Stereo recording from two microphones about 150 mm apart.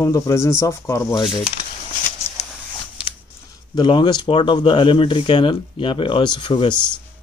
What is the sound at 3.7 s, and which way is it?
Speech, 30° left (ahead or behind).